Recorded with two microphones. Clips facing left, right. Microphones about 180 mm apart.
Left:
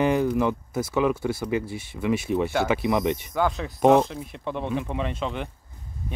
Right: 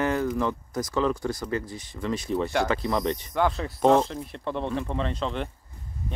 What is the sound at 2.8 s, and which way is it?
Speech, 20° left (ahead or behind).